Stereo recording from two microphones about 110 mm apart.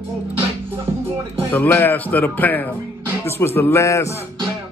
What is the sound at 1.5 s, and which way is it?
A man's voice, 20° left (ahead or behind).